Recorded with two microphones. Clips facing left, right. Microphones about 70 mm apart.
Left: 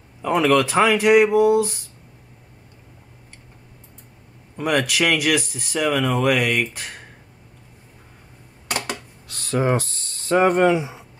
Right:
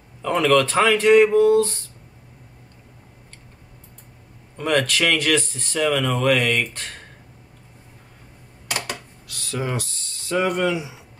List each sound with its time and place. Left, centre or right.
0.2 s speech: centre
4.6 s speech: centre
9.3 s speech: left